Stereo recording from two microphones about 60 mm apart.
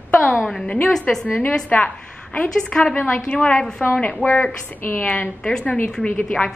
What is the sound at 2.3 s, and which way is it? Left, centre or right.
A woman's voice, left.